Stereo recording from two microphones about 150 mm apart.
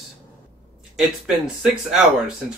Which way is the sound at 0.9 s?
5° right (ahead or behind).